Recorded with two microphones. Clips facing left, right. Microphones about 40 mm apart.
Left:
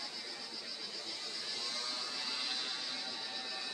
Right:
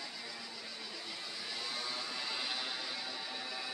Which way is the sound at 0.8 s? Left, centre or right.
Right.